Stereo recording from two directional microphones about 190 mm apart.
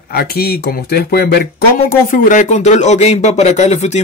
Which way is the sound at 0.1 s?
55° left (ahead or behind).